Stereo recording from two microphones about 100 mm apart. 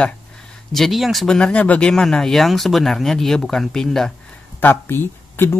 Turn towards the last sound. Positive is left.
turn(degrees=25)  # may be behind; listen again after turning